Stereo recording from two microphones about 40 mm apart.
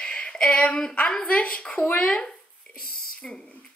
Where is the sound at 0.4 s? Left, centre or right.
Left.